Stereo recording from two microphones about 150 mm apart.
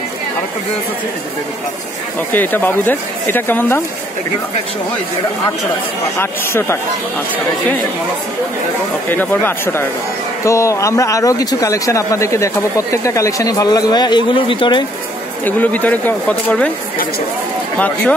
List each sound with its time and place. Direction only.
2.3 s speech: 10° left (ahead or behind)
6.1 s speech: 15° left (ahead or behind)
9.1 s speech: 10° left (ahead or behind); by 14.9 s 35° left (ahead or behind)
15.4 s speech: 10° left (ahead or behind)
17.7 s speech: 10° left (ahead or behind)